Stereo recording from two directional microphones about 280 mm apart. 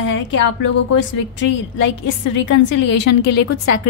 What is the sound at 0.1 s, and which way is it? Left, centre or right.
A woman's voice, left.